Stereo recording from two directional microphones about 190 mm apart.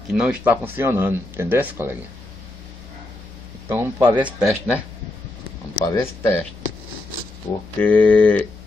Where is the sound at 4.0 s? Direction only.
25° right (ahead or behind).